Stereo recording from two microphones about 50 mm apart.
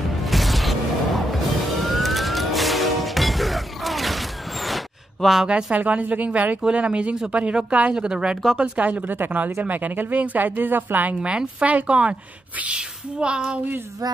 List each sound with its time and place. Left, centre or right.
0.2 s music: centre
5.5 s a woman's voice: right
7.9 s speech: centre
8.5 s speech: right
11.2 s a woman's voice: right